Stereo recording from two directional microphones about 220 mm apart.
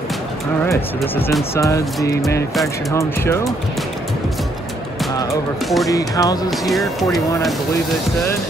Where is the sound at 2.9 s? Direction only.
15° left (ahead or behind).